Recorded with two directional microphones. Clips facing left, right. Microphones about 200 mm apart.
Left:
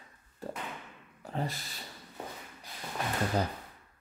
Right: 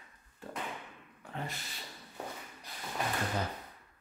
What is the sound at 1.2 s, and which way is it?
Speech, 35° left (ahead or behind).